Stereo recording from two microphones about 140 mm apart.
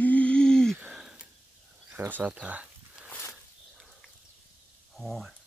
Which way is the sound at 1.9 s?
15° right (ahead or behind).